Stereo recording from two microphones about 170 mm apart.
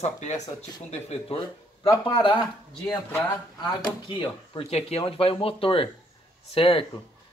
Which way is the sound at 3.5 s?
25° left (ahead or behind).